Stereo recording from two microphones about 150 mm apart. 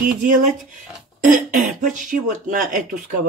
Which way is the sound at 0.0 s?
60° right (ahead or behind).